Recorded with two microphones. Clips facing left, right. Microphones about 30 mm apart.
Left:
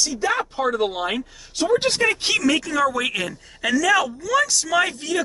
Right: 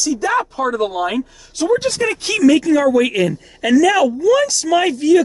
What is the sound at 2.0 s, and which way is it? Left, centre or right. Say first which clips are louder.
A woman's voice: right 5 dB; centre.